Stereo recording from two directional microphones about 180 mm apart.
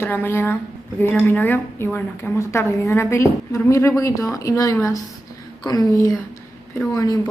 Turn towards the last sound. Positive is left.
turn(degrees=20)  # may be behind; listen again after turning